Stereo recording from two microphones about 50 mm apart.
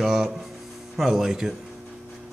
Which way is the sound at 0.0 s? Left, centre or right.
Centre.